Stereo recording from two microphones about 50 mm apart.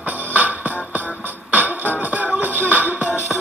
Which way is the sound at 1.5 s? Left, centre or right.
Right.